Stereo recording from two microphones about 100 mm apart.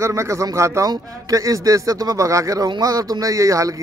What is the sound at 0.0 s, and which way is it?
A man's voice, 30° right (ahead or behind).